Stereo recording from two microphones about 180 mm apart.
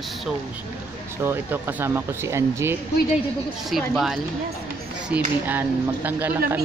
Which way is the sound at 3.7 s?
Centre (ahead or behind).